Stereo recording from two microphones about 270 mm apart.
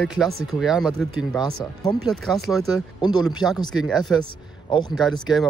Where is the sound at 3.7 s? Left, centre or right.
Centre.